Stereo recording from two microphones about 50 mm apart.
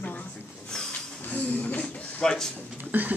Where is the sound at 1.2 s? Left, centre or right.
Left.